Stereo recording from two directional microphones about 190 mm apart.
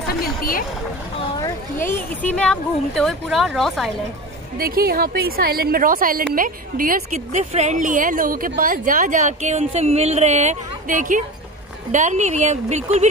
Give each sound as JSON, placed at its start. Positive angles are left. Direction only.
{"t": 0.4, "sound": "speech", "side_deg": 50}
{"t": 1.3, "sound": "speech", "side_deg": 15}
{"t": 4.6, "sound": "a woman's voice", "side_deg": -50}